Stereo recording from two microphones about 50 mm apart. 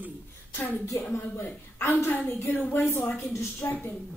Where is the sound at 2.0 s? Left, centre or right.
Left.